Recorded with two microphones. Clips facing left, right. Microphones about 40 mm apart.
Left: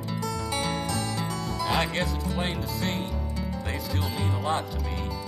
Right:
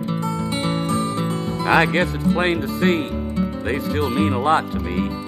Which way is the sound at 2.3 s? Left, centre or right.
Right.